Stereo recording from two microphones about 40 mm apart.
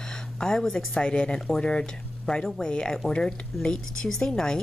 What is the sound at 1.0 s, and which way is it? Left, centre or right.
A woman's voice, left.